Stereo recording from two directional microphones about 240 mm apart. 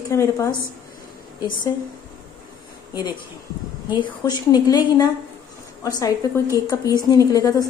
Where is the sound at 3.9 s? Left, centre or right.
Centre.